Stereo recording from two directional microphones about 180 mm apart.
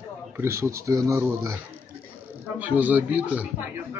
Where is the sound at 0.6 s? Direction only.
15° right (ahead or behind).